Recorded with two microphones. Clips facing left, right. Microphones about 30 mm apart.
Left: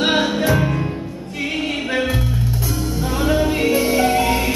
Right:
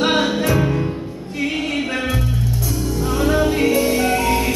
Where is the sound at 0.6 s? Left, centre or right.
Centre.